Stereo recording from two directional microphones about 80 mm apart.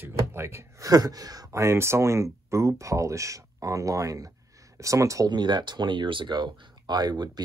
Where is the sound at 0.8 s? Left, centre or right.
Right.